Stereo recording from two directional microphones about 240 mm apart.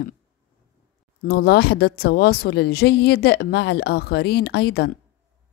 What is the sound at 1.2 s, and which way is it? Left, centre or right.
A woman's voice, left.